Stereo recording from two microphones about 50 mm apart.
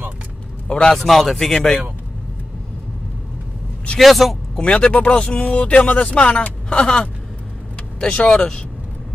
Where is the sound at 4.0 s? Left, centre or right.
Centre.